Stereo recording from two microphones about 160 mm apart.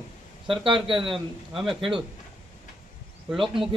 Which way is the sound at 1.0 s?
Centre (ahead or behind).